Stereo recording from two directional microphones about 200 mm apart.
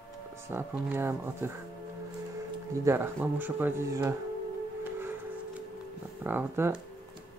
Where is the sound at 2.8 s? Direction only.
10° right (ahead or behind).